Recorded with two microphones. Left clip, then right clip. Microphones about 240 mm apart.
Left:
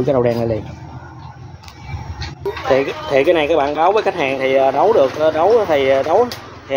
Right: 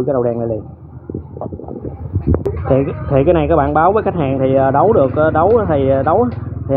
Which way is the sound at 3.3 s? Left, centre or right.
Centre.